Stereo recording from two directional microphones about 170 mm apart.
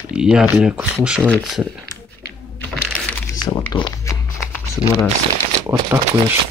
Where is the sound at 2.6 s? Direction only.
10° left (ahead or behind).